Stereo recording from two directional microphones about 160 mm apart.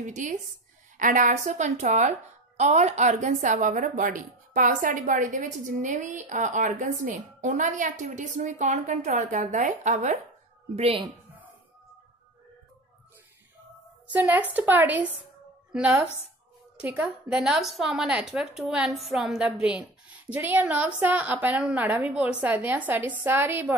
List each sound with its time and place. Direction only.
0.0 s speech: 50° right (ahead or behind)
14.1 s a woman's voice: 10° right (ahead or behind)